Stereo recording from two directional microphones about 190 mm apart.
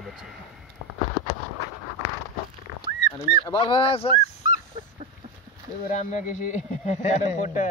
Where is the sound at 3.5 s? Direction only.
25° left (ahead or behind).